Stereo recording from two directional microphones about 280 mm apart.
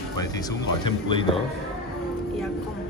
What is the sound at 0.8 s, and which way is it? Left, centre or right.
Speech, centre.